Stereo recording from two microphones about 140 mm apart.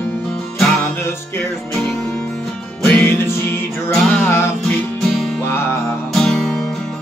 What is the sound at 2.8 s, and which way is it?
Music, 15° left (ahead or behind).